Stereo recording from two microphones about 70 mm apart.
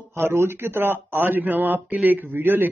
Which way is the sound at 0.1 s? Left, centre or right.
Right.